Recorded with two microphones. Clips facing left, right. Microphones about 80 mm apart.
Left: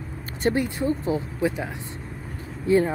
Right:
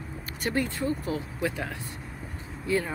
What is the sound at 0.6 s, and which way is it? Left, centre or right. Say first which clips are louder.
Speech: left 4 dB; left.